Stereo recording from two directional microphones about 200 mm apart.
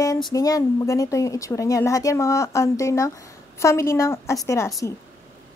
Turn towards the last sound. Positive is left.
turn(degrees=15)  # may be behind; listen again after turning